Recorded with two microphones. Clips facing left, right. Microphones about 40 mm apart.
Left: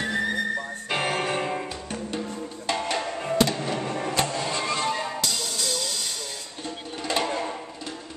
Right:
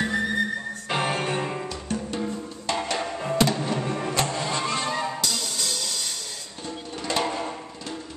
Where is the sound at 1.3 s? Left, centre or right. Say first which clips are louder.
Left 1 dB; centre.